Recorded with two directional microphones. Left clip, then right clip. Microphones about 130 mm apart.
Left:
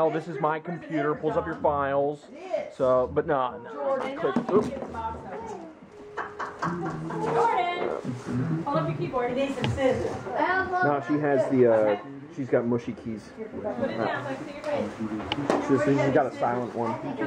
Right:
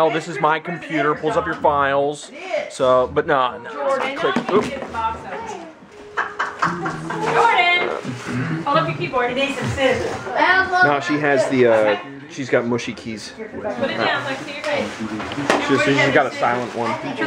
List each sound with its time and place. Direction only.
0.0 s a woman's voice: 20° right (ahead or behind)
6.4 s a sound: 20° right (ahead or behind)
9.8 s a woman's voice: 20° right (ahead or behind)
13.7 s a woman's voice: 25° right (ahead or behind)